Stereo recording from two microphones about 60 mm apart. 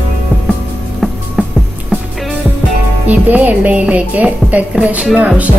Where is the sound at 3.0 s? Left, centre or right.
Right.